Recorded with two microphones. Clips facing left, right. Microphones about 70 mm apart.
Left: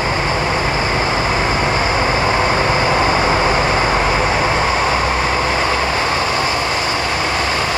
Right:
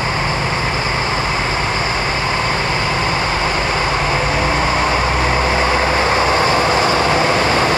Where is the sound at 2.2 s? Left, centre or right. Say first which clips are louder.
Left 3 dB; left; by 5.7 s centre.